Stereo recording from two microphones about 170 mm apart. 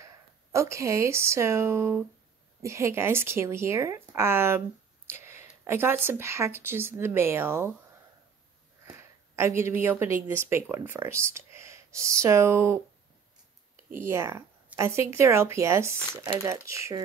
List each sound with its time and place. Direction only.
0.0 s speech: 15° right (ahead or behind)
8.8 s speech: 15° right (ahead or behind)
13.9 s speech: 15° right (ahead or behind)